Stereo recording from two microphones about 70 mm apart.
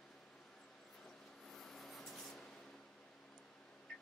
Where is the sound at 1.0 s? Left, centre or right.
Centre.